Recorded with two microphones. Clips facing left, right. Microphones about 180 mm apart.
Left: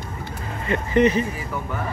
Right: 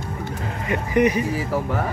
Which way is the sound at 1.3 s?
90° right.